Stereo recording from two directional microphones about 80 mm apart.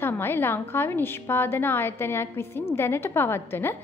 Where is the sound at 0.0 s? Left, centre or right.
Left.